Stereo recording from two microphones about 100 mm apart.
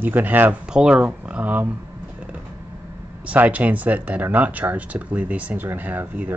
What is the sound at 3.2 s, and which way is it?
Speech, 15° right (ahead or behind).